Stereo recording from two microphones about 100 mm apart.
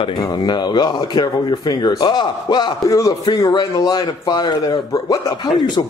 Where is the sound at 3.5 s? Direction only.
45° left (ahead or behind).